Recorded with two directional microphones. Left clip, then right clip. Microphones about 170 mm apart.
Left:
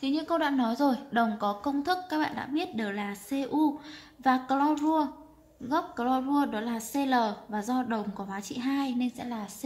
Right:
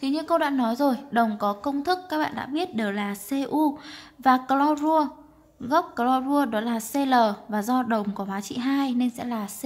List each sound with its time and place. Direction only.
0.0 s a woman's voice: 20° right (ahead or behind)